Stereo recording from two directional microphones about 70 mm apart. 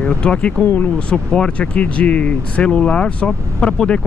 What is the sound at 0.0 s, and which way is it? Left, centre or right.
Speech, centre.